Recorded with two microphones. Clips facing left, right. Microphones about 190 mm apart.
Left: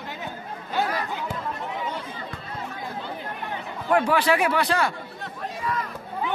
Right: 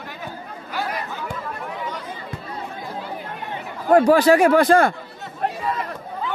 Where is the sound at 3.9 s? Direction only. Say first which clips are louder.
Right 7 dB; 40° right (ahead or behind).